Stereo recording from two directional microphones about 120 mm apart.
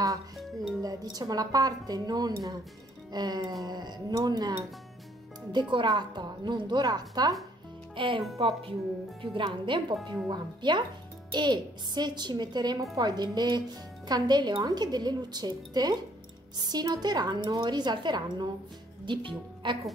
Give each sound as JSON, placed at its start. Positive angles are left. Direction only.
{"t": 0.8, "sound": "speech", "side_deg": -30}
{"t": 7.9, "sound": "a woman's voice", "side_deg": -45}